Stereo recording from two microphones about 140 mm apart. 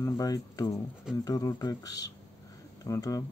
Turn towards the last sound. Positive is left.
turn(degrees=25)  # may be behind; listen again after turning